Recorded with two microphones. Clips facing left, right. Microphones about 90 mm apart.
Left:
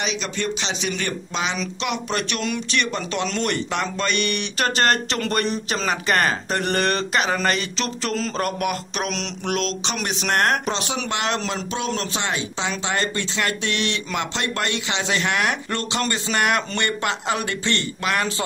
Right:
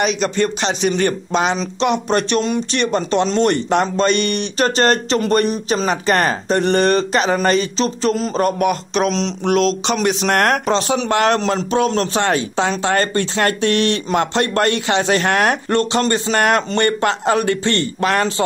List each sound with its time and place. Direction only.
0.0 s speech: 50° right (ahead or behind)